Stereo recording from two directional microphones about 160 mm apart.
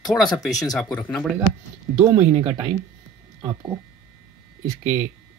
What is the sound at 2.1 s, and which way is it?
Speech, 35° right (ahead or behind).